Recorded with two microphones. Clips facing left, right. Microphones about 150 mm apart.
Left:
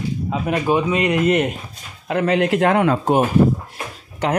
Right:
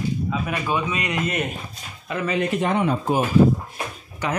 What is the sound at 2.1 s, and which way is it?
A man's voice, 80° left.